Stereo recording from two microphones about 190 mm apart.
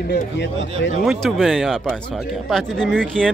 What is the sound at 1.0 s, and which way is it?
Speech, centre (ahead or behind).